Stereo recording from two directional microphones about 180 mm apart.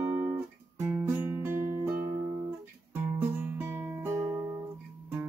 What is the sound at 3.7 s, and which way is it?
Music, 15° right (ahead or behind).